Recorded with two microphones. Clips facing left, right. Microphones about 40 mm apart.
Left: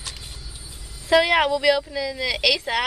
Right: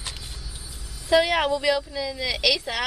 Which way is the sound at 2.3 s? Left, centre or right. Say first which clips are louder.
Left 1 dB; centre.